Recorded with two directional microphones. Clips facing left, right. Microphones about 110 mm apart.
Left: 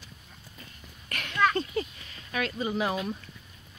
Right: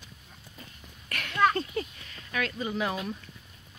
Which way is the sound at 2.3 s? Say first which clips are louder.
Left 1 dB; 20° left (ahead or behind).